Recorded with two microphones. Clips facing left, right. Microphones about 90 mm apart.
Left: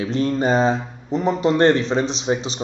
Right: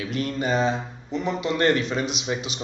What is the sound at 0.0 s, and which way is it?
Speech, 30° left (ahead or behind).